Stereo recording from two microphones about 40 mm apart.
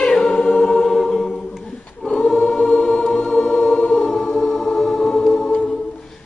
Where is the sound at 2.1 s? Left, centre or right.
Left.